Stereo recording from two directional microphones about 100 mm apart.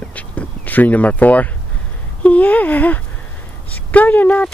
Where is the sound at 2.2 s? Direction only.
15° left (ahead or behind).